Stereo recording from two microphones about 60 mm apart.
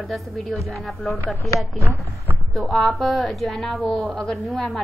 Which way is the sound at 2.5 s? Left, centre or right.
Centre.